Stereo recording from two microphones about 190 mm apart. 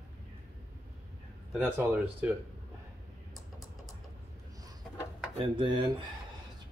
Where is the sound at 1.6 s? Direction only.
10° right (ahead or behind).